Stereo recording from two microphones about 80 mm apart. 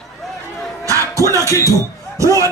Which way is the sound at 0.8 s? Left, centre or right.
Right.